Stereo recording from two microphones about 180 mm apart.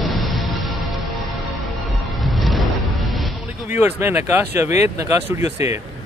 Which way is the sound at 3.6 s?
10° right (ahead or behind).